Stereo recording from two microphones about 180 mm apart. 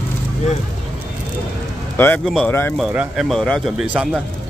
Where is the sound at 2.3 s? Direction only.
Centre (ahead or behind).